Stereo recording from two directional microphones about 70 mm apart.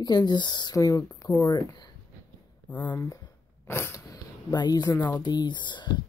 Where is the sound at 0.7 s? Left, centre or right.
Left.